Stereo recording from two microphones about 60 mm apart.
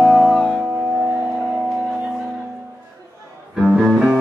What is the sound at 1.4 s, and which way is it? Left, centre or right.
Music, centre.